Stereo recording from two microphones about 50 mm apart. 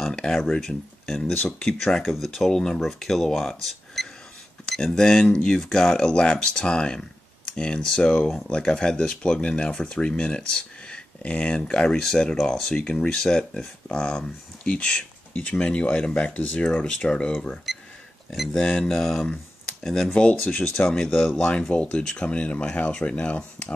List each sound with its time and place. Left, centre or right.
0.1 s speech: centre
1.4 s speech: centre
1.8 s speech: centre
12.7 s speech: left
18.8 s speech: centre
20.2 s speech: left
21.1 s speech: centre
21.4 s speech: left